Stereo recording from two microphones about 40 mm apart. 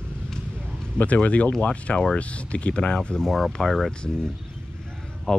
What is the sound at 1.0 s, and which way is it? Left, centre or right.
Speech, left.